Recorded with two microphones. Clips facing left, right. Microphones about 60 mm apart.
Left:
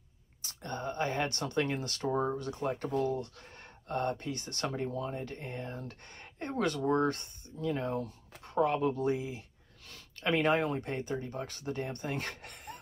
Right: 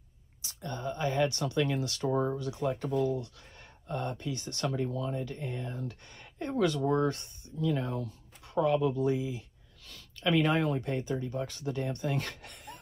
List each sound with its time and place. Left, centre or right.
0.4 s speech: left
8.5 s speech: left